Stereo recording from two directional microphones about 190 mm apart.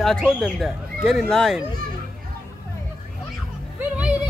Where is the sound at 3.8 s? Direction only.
5° right (ahead or behind).